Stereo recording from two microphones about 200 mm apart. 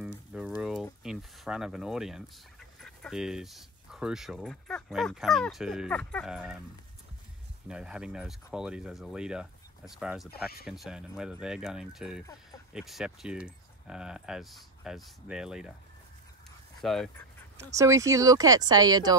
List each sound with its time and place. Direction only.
0.6 s a sound: 5° right (ahead or behind)
1.0 s speech: centre (ahead or behind)
7.6 s speech: 5° right (ahead or behind)
16.8 s speech: centre (ahead or behind)
17.7 s speech: 15° right (ahead or behind)